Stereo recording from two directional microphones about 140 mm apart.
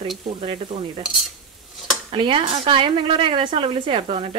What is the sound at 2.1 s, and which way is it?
Speech, 40° right (ahead or behind).